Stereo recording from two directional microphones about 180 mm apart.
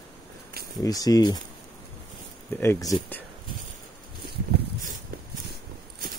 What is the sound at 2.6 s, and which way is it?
Speech, 15° left (ahead or behind).